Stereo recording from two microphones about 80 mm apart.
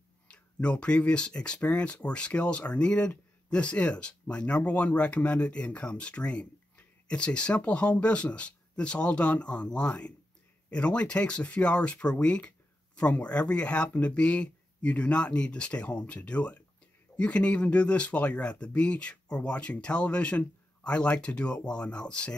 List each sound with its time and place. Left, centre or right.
0.3 s speech: centre